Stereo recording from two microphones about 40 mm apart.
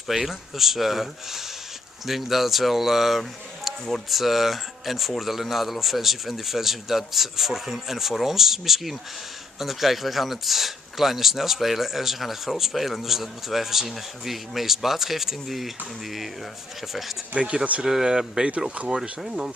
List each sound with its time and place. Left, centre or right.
0.1 s speech: centre
17.3 s speech: right
17.8 s speech: centre